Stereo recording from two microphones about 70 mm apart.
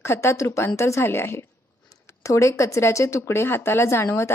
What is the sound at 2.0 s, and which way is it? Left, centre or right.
Speech, left.